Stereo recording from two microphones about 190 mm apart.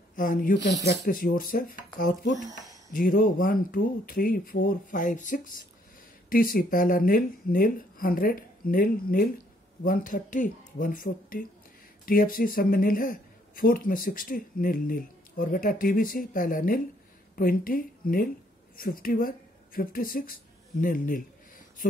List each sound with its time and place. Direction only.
0.1 s speech: 45° left (ahead or behind)